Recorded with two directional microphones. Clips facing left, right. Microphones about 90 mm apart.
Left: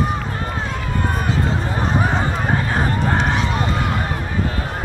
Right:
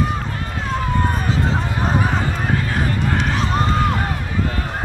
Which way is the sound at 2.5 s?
30° left (ahead or behind).